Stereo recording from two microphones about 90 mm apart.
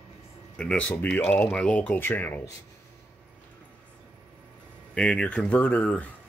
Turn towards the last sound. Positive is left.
turn(degrees=20)  # may be behind; listen again after turning